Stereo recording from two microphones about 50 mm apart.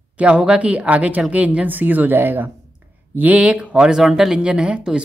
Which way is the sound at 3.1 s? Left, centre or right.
Right.